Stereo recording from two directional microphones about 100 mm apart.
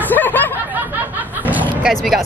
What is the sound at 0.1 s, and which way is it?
Snicker, 20° left (ahead or behind).